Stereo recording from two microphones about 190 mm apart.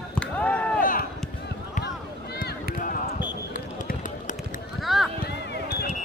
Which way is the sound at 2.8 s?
45° left (ahead or behind).